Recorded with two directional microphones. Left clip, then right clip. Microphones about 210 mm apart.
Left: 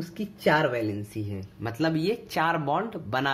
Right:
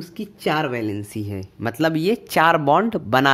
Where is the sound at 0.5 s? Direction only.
45° right (ahead or behind).